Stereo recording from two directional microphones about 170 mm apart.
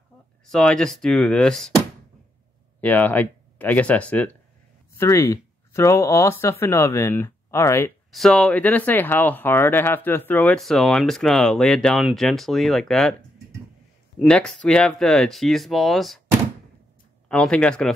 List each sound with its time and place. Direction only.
0.5 s speech: 5° left (ahead or behind)
2.8 s speech: 10° left (ahead or behind)
8.1 s speech: 5° left (ahead or behind)
14.2 s speech: 5° left (ahead or behind)
17.3 s speech: 5° left (ahead or behind)